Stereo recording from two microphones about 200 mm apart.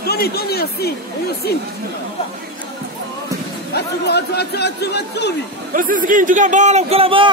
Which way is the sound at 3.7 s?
55° left (ahead or behind).